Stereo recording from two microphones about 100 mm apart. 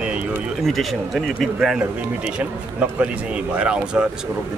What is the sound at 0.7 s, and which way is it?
Speech, centre (ahead or behind).